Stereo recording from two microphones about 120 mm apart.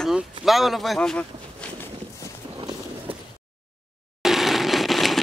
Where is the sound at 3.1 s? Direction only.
50° right (ahead or behind).